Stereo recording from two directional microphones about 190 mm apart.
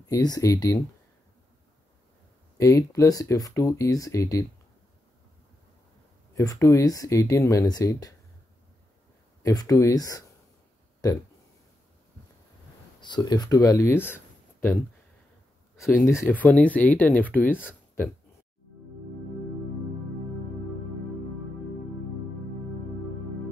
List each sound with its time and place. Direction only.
0.0 s speech: 20° left (ahead or behind)
2.5 s speech: 15° left (ahead or behind)
6.3 s speech: 15° left (ahead or behind)
9.4 s speech: 20° left (ahead or behind)
13.0 s speech: 20° left (ahead or behind)
16.1 s speech: 15° left (ahead or behind)